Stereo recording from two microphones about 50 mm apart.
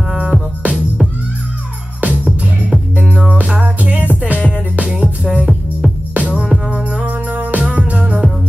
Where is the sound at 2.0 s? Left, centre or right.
Right.